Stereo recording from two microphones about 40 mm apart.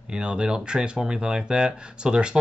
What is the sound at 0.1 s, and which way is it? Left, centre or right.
Speech, right.